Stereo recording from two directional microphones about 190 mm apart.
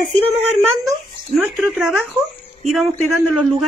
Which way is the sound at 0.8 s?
Centre (ahead or behind).